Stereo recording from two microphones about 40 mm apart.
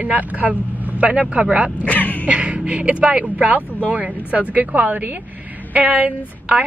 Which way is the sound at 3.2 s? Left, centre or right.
Right.